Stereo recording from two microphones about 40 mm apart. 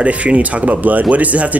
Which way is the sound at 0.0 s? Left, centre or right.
Right.